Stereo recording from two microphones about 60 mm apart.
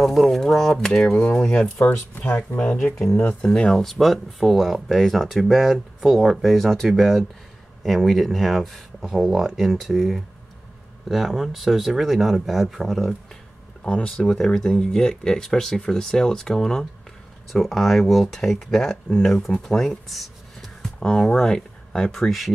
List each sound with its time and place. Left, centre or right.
0.0 s speech: centre
1.9 s speech: left
3.4 s speech: centre
3.7 s speech: centre
13.8 s speech: centre